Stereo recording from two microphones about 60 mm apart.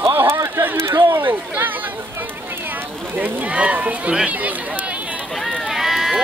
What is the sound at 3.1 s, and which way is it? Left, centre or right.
Speech, right.